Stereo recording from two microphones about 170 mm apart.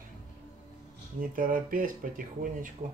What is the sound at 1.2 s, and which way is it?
Speech, 55° right (ahead or behind).